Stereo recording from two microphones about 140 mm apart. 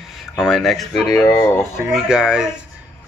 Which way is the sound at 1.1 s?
20° left (ahead or behind).